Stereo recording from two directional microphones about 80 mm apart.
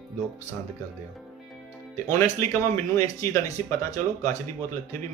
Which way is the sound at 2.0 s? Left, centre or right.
Left.